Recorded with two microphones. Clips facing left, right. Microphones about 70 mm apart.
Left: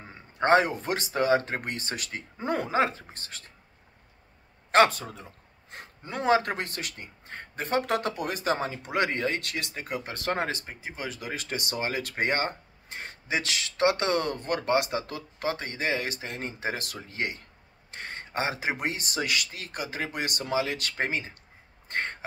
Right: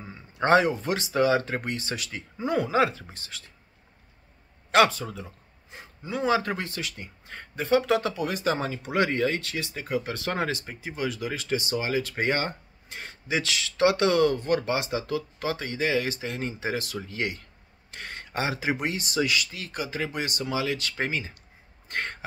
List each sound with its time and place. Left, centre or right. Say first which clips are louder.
0.0 s speech: even; left
4.6 s speech: even; left
5.7 s speech: right 4 dB; left
10.0 s speech: right 1 dB; left
21.8 s throat clearing: even; left